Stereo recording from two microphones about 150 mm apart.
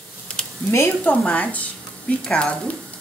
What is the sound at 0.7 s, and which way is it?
Speech, 15° left (ahead or behind).